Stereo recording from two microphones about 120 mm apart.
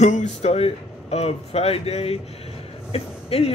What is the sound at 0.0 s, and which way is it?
Speech, 80° left.